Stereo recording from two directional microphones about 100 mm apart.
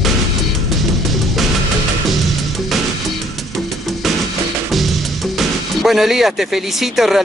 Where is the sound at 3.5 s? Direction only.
Centre (ahead or behind).